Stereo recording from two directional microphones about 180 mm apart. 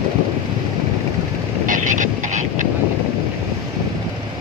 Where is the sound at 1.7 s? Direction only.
45° right (ahead or behind).